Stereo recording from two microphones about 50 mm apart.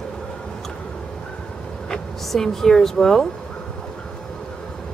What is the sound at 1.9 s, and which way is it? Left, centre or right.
Speech, centre.